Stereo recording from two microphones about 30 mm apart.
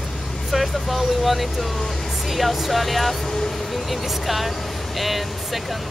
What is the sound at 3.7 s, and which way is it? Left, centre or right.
Speech, centre.